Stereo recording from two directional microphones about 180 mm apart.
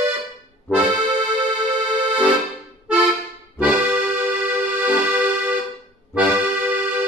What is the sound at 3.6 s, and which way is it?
Accordion, 10° right (ahead or behind).